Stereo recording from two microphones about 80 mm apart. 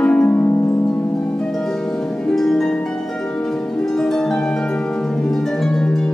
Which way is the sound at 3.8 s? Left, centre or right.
Centre.